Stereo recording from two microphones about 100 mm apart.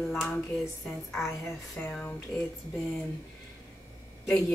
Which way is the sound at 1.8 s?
15° left (ahead or behind).